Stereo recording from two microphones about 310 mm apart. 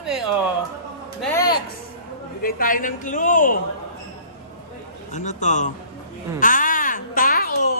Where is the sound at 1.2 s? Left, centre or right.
Centre.